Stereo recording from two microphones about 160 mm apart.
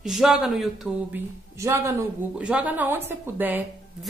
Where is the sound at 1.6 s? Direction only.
20° right (ahead or behind).